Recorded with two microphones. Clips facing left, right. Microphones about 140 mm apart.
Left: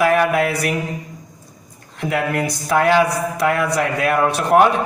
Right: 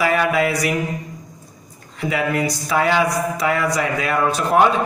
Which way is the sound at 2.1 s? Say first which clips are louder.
Even; 55° left (ahead or behind).